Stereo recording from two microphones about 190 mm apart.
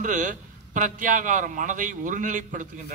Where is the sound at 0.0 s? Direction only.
40° right (ahead or behind).